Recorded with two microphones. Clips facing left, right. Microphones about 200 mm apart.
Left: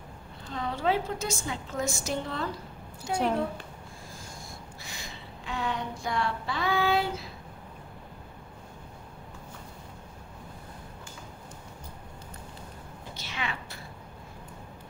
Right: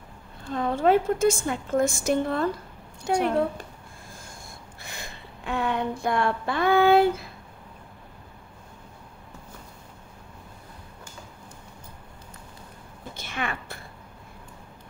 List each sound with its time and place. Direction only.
0.5 s a woman's voice: 50° right (ahead or behind)
4.8 s child singing: 55° right (ahead or behind)
13.1 s a sound: 50° right (ahead or behind)